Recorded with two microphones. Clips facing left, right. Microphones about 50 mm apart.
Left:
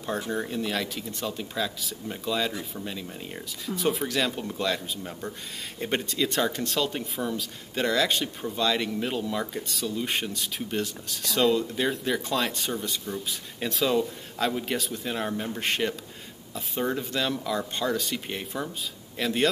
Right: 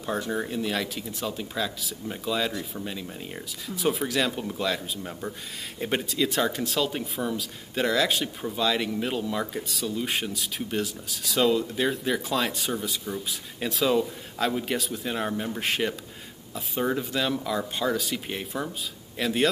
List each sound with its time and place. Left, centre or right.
0.3 s speech: centre